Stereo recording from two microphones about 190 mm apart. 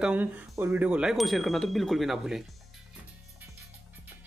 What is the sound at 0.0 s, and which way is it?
Speech, 10° right (ahead or behind).